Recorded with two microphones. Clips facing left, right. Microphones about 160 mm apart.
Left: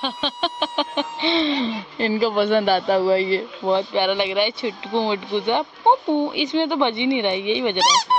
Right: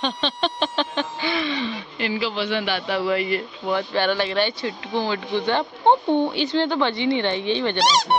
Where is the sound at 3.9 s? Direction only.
15° left (ahead or behind).